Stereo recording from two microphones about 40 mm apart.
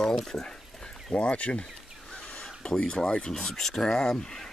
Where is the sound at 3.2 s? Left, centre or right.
Centre.